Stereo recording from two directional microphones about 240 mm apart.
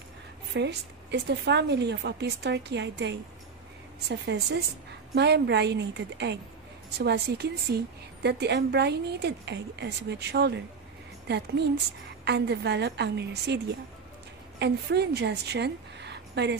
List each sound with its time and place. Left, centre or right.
0.6 s a woman's voice: right
4.3 s a woman's voice: right